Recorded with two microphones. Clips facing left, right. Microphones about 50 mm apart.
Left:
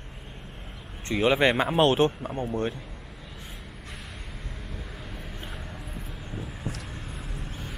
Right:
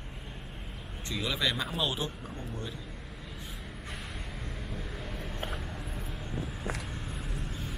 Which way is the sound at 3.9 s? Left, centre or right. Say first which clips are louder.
Right 1 dB; centre.